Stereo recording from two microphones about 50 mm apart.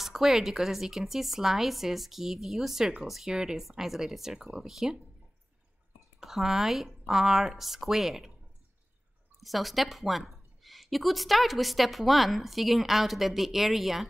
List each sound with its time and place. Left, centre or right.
0.0 s a woman's voice: centre
6.1 s a woman's voice: centre
9.4 s a woman's voice: centre